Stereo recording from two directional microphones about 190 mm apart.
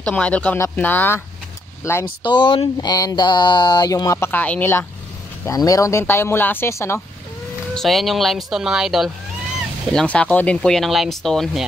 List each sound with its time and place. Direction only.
0.0 s speech: 5° left (ahead or behind)
2.2 s speech: 25° left (ahead or behind)
7.7 s speech: centre (ahead or behind)